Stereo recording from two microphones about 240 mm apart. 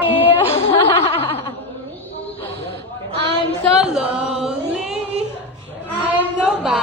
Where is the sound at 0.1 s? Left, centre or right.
Left.